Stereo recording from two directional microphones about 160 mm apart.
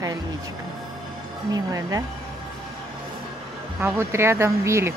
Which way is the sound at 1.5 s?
20° right (ahead or behind).